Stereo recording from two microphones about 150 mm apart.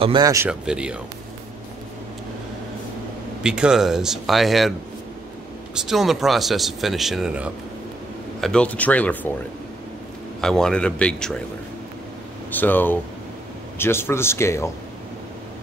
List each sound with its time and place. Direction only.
0.0 s speech: 35° right (ahead or behind)
0.5 s speech: 5° right (ahead or behind)
3.4 s speech: 5° right (ahead or behind)
5.8 s speech: centre (ahead or behind)
8.4 s speech: 5° left (ahead or behind)
10.4 s speech: 5° left (ahead or behind)
12.4 s speech: 10° left (ahead or behind)